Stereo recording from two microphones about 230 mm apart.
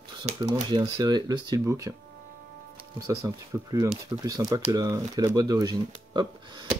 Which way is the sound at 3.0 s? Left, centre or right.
Centre.